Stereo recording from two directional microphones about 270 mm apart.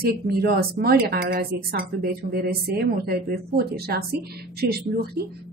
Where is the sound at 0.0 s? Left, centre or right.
Right.